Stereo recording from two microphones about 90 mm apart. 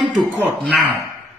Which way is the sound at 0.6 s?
Centre (ahead or behind).